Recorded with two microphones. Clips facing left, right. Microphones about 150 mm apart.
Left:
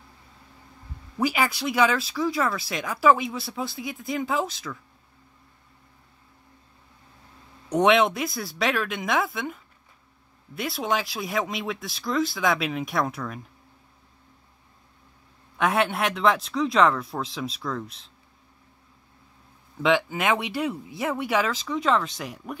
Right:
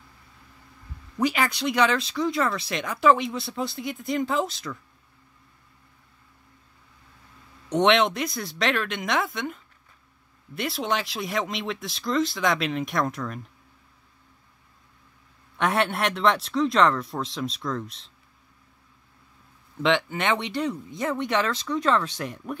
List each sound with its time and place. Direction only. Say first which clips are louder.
1.1 s speech: even; 5° left (ahead or behind)
7.8 s speech: left 1 dB; 5° left (ahead or behind)
15.5 s speech: left 1 dB; centre (ahead or behind)
19.8 s speech: left 1 dB; 5° left (ahead or behind)